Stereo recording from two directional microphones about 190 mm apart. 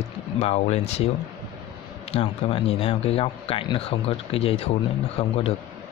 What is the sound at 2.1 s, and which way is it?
Speech, 30° left (ahead or behind).